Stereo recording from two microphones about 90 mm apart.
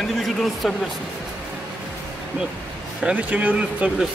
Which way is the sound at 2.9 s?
15° right (ahead or behind).